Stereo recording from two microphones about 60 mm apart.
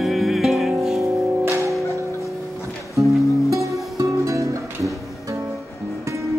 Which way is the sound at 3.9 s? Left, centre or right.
Right.